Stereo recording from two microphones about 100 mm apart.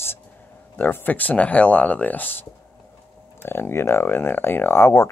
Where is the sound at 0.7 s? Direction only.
20° left (ahead or behind).